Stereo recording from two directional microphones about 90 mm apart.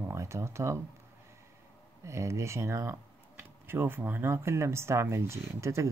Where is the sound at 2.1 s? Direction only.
35° right (ahead or behind).